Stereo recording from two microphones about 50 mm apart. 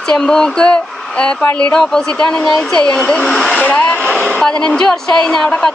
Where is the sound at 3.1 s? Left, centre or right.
Centre.